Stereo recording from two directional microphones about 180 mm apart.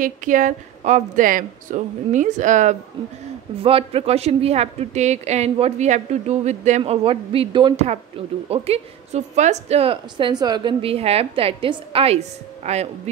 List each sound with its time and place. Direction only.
0.0 s a woman's voice: 45° right (ahead or behind)
3.6 s a woman's voice: 30° right (ahead or behind)